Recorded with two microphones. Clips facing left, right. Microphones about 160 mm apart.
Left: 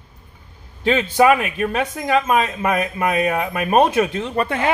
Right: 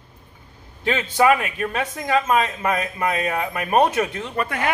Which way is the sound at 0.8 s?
20° left (ahead or behind).